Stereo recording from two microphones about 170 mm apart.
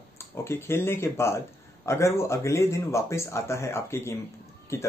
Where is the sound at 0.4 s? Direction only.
15° left (ahead or behind).